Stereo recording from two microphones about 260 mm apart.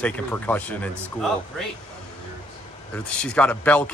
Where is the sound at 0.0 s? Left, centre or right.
Centre.